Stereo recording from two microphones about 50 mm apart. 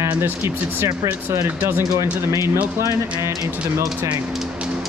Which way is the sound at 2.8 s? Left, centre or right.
Right.